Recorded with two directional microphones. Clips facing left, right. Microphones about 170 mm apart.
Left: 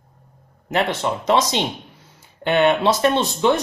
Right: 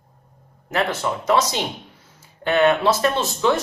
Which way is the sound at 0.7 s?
20° left (ahead or behind).